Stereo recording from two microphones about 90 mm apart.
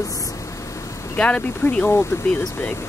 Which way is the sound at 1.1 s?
15° left (ahead or behind).